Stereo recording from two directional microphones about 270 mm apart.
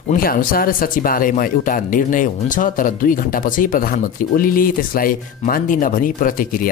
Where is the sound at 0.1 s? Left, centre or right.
Left.